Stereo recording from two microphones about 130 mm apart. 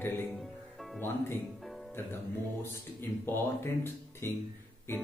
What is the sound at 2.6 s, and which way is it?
A man's voice, 15° left (ahead or behind).